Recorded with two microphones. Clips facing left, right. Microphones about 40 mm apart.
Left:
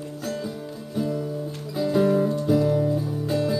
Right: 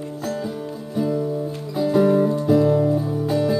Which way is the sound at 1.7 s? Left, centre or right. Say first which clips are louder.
Right 4 dB; centre.